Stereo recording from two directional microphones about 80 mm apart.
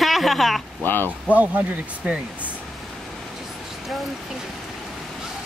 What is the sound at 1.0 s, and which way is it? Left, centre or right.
Speech, centre.